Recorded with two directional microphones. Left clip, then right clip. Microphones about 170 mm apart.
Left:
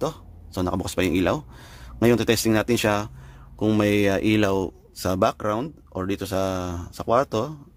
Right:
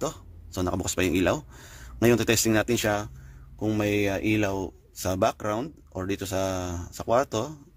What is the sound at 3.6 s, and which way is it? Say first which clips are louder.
Speech: left 5 dB; 45° left (ahead or behind).